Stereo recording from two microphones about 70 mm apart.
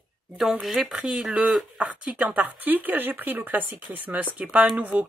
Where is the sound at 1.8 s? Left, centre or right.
Right.